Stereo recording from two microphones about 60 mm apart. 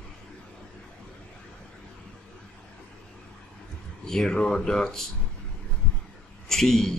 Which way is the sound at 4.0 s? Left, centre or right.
Centre.